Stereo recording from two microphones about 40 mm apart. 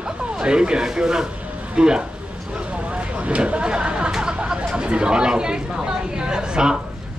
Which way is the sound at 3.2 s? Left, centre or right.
Right.